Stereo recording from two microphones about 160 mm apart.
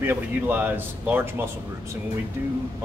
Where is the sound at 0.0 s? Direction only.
10° right (ahead or behind).